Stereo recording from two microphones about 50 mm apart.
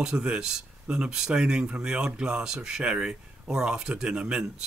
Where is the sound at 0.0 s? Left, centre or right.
Centre.